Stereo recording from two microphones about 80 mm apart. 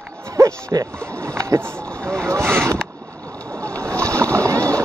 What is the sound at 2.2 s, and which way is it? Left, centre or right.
Vehicle, right.